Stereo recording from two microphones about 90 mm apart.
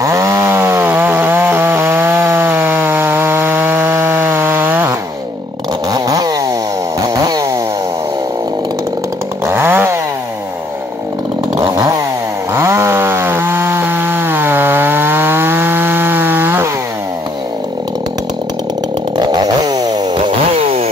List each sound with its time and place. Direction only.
0.0 s chainsaw: 30° right (ahead or behind)
5.9 s chainsaw: 45° right (ahead or behind)
9.5 s chainsaw: 25° right (ahead or behind)
11.6 s chainsaw: 40° right (ahead or behind)
12.5 s chainsaw: 30° right (ahead or behind)
19.1 s chainsaw: 50° right (ahead or behind)
20.2 s chainsaw: 70° right (ahead or behind)